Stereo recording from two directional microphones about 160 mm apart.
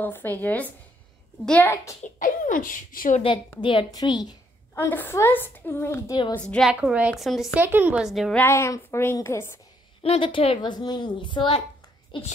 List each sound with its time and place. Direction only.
0.0 s a woman's voice: 10° left (ahead or behind)
2.1 s speech: 55° left (ahead or behind)
3.6 s a woman's voice: 25° left (ahead or behind)
4.7 s a woman's voice: 10° left (ahead or behind)
6.1 s a woman's voice: 30° left (ahead or behind)
6.4 s a woman's voice: 5° left (ahead or behind)
6.7 s a woman's voice: 5° right (ahead or behind)
8.4 s a woman's voice: 15° left (ahead or behind)
10.0 s a woman's voice: 35° left (ahead or behind)